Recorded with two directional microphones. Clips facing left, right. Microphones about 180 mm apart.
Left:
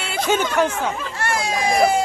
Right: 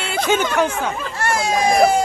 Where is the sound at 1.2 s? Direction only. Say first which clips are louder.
Right 4 dB; 45° right (ahead or behind).